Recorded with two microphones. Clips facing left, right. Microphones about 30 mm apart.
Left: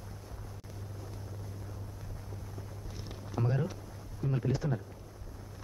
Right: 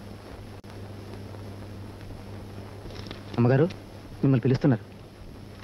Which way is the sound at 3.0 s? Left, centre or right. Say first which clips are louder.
Right 11 dB; right.